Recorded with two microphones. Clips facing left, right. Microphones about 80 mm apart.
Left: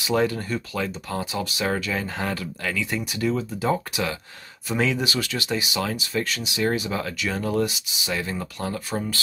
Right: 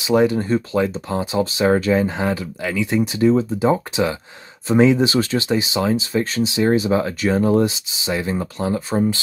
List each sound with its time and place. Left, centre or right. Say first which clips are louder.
0.0 s speech: right 6 dB; centre